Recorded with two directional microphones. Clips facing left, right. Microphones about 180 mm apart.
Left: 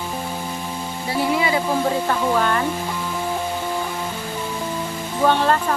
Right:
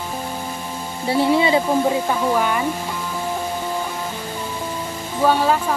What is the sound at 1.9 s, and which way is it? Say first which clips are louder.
Speech: right 1 dB; 10° right (ahead or behind).